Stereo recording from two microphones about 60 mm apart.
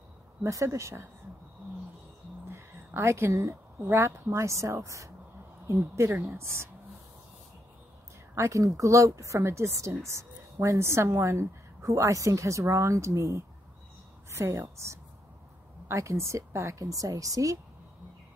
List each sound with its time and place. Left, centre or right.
0.4 s a woman's voice: right
2.4 s speech: right
5.7 s a woman's voice: right
8.4 s speech: right
15.9 s speech: right
16.8 s speech: right